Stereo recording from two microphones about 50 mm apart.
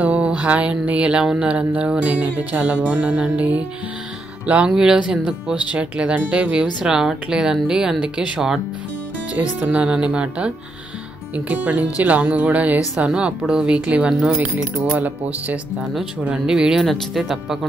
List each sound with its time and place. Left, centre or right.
0.0 s a sound: right
0.4 s music: right
4.6 s speech: centre
5.7 s music: right
6.6 s speech: centre
9.3 s music: right
11.3 s speech: right
13.5 s speech: centre
13.7 s speech: right
14.0 s music: right
16.4 s speech: centre
16.8 s speech: centre